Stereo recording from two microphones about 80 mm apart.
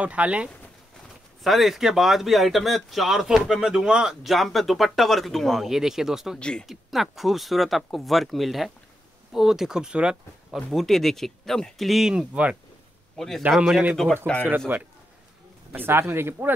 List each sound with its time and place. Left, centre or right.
0.0 s speech: centre
1.4 s speech: centre
10.7 s speech: centre
13.1 s a man's voice: centre
13.7 s speech: centre
14.1 s speech: centre
14.7 s speech: right